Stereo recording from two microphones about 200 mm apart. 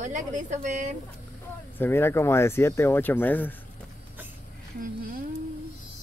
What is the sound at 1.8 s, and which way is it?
Speech, 10° left (ahead or behind).